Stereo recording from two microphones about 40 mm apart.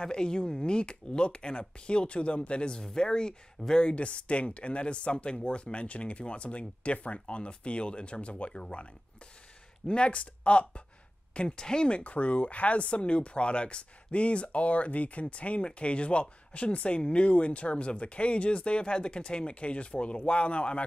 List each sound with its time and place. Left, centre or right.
0.0 s speech: left
9.8 s speech: left
12.0 s speech: left